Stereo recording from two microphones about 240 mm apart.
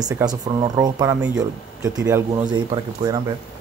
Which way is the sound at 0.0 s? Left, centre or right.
Centre.